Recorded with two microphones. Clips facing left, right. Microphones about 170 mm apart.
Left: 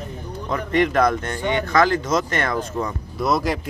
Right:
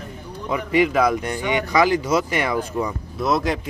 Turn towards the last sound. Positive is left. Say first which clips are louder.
# even
turn(degrees=0)  # may be behind; listen again after turning